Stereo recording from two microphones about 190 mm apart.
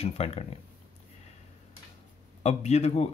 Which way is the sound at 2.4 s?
35° left (ahead or behind).